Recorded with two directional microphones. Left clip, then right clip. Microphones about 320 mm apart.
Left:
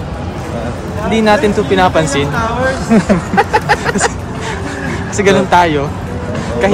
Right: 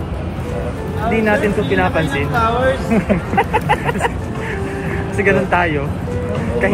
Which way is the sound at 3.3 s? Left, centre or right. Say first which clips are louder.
Left 4 dB; left.